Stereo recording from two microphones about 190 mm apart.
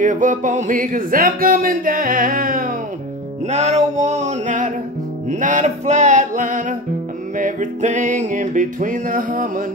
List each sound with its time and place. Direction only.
0.0 s speech: 40° right (ahead or behind)
3.4 s music: 35° right (ahead or behind)
7.3 s speech: 40° right (ahead or behind)